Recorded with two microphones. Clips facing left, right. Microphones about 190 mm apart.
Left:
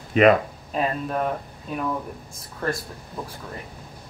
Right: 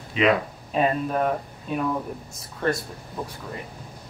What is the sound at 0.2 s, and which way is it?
Speech, 50° left (ahead or behind).